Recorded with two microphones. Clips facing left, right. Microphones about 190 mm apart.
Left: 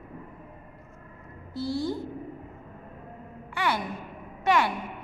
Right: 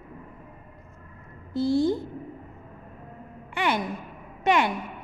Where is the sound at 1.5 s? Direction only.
20° right (ahead or behind).